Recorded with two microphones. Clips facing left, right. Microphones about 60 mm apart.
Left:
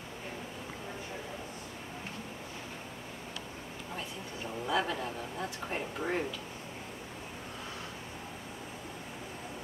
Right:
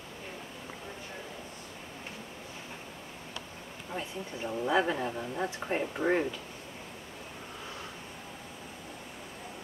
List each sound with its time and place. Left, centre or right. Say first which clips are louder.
4.6 s speech: right 4 dB; right